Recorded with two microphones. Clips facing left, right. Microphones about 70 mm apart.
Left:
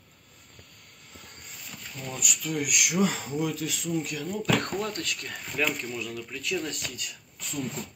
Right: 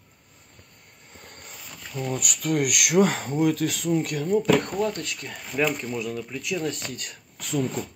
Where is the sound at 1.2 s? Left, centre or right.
Right.